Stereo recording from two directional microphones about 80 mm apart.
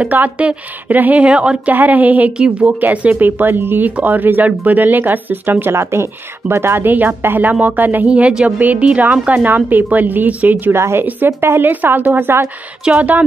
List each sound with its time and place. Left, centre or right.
0.0 s a woman's voice: centre